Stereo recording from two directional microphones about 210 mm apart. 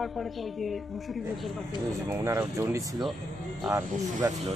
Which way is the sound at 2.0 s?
15° right (ahead or behind).